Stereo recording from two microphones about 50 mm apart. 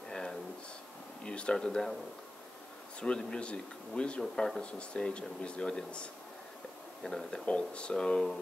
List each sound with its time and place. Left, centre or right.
0.1 s a sound: centre
1.2 s speech: centre
3.0 s speech: centre
4.2 s speech: centre
4.6 s speech: centre
7.0 s speech: centre
7.4 s speech: left